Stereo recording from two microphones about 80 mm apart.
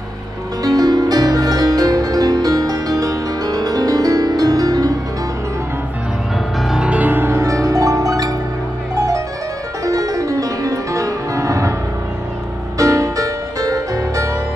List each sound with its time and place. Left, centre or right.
0.7 s music: right
6.7 s music: centre
7.3 s music: right
9.8 s music: right
12.7 s music: right